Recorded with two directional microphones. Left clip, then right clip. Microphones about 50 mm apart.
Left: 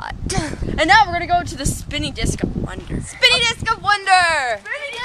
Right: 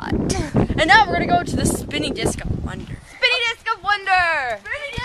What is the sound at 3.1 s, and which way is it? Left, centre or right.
Speech, left.